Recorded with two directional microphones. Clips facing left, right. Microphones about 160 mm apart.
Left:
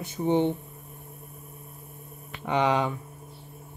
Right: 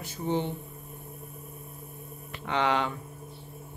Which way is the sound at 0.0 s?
20° left (ahead or behind).